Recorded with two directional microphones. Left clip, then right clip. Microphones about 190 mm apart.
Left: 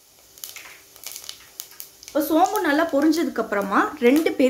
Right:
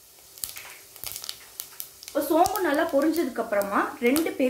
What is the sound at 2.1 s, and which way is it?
Speech, 55° left (ahead or behind).